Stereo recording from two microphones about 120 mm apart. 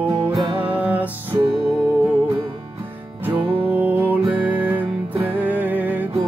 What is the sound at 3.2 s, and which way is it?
Music, 50° right (ahead or behind).